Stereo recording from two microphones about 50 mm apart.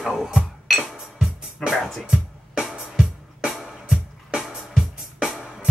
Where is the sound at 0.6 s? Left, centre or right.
Centre.